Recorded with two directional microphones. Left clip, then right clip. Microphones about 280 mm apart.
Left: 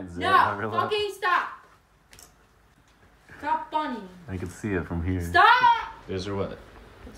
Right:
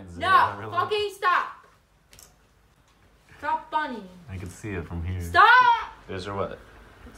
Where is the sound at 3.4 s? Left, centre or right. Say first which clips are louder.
Even; centre.